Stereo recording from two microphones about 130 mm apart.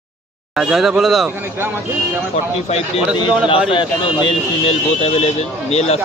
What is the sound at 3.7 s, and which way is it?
Speech, 40° left (ahead or behind).